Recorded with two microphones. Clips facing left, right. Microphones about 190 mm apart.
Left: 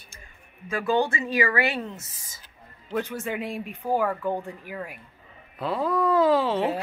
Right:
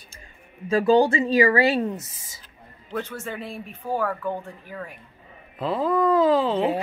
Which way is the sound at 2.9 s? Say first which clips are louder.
Left 2 dB; 15° left (ahead or behind).